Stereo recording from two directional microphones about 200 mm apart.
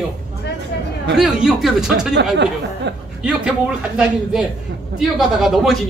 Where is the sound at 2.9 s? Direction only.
60° right (ahead or behind).